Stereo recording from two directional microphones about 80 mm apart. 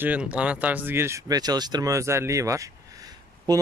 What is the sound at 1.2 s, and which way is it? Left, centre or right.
Speech, right.